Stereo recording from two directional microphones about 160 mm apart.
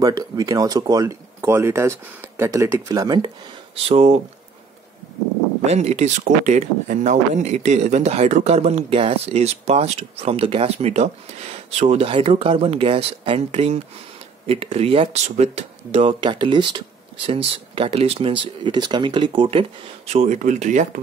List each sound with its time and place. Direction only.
0.0 s speech: 25° right (ahead or behind)
3.7 s speech: 40° right (ahead or behind)
5.7 s speech: 40° right (ahead or behind)
20.1 s speech: 45° right (ahead or behind)